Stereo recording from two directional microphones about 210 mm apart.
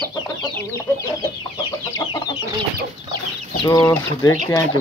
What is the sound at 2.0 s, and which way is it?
Chicken, 15° left (ahead or behind).